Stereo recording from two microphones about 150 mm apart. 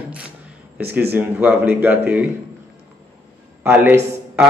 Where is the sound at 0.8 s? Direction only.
15° right (ahead or behind).